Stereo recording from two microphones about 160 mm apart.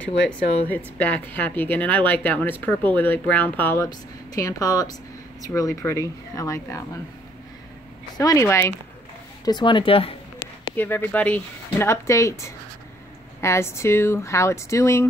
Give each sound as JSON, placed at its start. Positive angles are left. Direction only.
{"t": 0.7, "sound": "speech", "side_deg": 10}
{"t": 8.2, "sound": "speech", "side_deg": 20}
{"t": 9.4, "sound": "speech", "side_deg": 25}
{"t": 10.8, "sound": "speech", "side_deg": 10}